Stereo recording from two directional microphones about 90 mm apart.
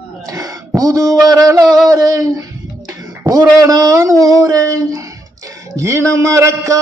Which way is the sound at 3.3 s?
40° right (ahead or behind).